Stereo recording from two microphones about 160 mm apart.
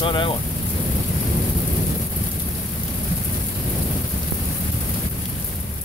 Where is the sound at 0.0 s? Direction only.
30° left (ahead or behind).